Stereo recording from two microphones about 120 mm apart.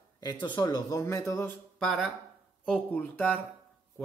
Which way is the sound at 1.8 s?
Centre (ahead or behind).